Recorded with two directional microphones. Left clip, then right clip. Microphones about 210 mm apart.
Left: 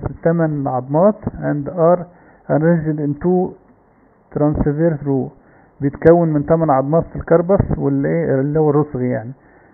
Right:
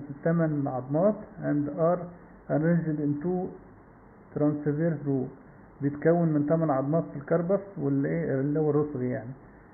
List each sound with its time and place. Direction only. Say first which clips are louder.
0.2 s a man's voice: left 10 dB; 40° left (ahead or behind)
4.3 s a man's voice: left 10 dB; 40° left (ahead or behind)